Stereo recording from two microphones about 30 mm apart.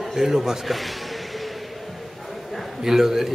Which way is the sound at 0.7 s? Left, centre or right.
Centre.